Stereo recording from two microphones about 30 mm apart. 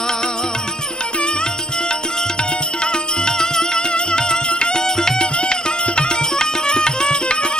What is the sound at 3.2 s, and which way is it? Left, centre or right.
Music, left.